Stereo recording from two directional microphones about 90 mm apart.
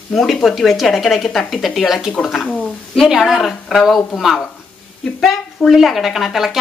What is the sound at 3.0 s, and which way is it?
Speech, 5° right (ahead or behind).